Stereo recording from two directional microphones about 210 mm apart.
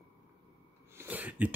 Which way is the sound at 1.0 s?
10° right (ahead or behind).